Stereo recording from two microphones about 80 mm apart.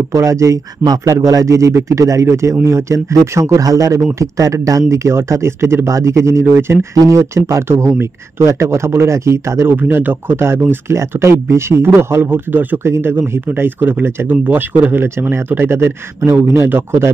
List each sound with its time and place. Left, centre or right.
0.1 s speech: right
9.8 s speech: right